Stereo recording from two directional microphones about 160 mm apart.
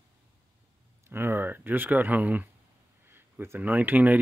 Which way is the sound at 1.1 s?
15° right (ahead or behind).